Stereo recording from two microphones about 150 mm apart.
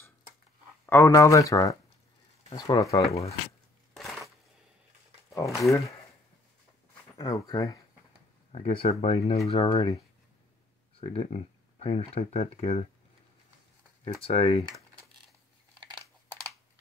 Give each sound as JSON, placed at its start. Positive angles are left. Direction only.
{"t": 0.8, "sound": "speech", "side_deg": 20}
{"t": 2.9, "sound": "speech", "side_deg": 45}
{"t": 3.9, "sound": "a sound", "side_deg": 0}
{"t": 5.6, "sound": "speech", "side_deg": 20}
{"t": 7.2, "sound": "speech", "side_deg": 30}
{"t": 8.5, "sound": "speech", "side_deg": 50}
{"t": 11.0, "sound": "speech", "side_deg": 45}
{"t": 14.0, "sound": "speech", "side_deg": 40}